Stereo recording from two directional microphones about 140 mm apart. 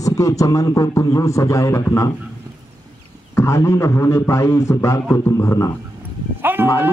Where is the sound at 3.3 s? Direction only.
20° left (ahead or behind).